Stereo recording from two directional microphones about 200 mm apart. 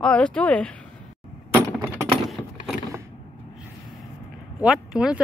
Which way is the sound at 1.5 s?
15° right (ahead or behind).